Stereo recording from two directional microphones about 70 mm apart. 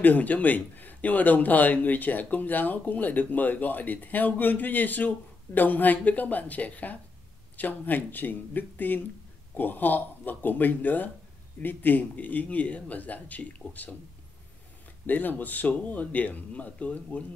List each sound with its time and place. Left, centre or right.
0.0 s a man's voice: left
15.0 s a man's voice: left